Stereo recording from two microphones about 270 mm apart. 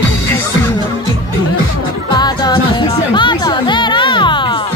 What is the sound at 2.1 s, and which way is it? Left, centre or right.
Music, centre.